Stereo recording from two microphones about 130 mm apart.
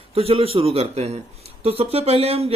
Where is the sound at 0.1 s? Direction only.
50° right (ahead or behind).